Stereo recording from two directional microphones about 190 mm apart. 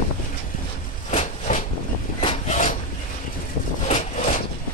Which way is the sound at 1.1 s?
40° left (ahead or behind).